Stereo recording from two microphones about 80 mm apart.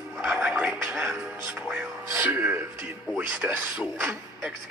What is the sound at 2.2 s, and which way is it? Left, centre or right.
Speech, right.